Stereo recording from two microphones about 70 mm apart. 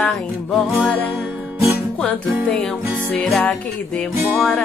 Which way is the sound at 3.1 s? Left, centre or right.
Centre.